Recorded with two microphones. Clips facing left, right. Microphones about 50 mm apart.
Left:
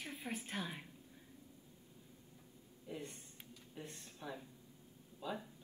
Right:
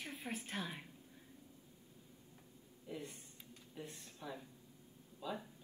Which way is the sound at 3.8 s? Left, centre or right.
Left.